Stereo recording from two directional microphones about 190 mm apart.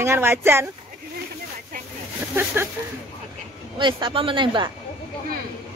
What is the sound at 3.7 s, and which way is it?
Speech, 25° right (ahead or behind).